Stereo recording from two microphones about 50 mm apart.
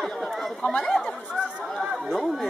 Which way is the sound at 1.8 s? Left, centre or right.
Centre.